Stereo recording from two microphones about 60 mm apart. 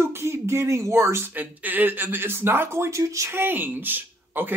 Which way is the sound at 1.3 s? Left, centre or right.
Right.